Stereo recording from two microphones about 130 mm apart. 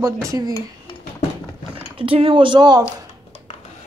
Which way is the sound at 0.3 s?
30° right (ahead or behind).